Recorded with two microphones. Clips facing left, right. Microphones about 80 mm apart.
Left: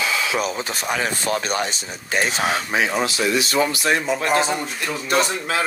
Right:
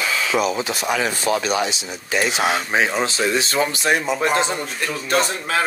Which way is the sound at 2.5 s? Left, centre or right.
Right.